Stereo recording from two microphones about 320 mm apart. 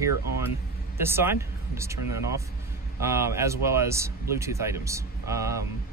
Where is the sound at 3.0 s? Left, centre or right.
Centre.